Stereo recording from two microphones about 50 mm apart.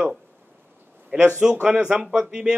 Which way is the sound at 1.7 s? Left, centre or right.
Centre.